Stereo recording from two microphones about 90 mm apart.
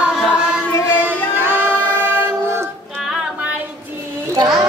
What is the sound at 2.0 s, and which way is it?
Choir, 25° right (ahead or behind).